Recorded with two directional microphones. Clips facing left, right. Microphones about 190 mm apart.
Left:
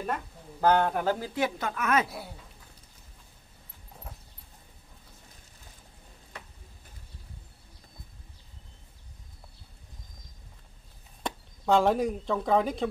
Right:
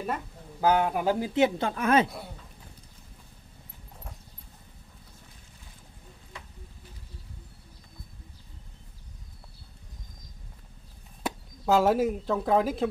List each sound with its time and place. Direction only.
0.0 s speech: 5° right (ahead or behind)
1.3 s a woman's voice: 25° right (ahead or behind)
11.2 s speech: 5° right (ahead or behind)